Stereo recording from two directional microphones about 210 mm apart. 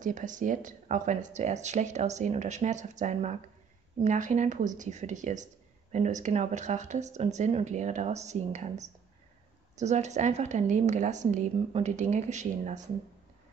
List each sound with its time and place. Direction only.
0.0 s speech: 35° right (ahead or behind)